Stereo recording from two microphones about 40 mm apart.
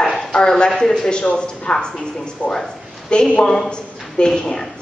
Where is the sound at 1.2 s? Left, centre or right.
Left.